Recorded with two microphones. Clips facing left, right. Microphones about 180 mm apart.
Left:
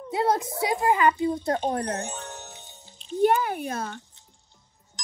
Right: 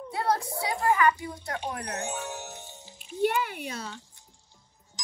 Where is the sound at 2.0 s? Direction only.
15° right (ahead or behind).